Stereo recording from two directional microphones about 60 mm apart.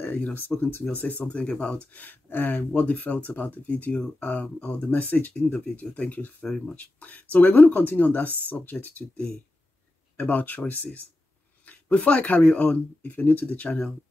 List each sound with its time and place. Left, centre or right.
0.0 s speech: left
0.9 s speech: left
10.1 s speech: left